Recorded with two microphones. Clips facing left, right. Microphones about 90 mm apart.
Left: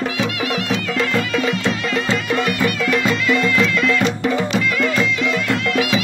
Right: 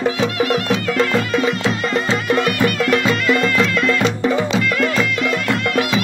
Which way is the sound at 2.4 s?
50° right (ahead or behind).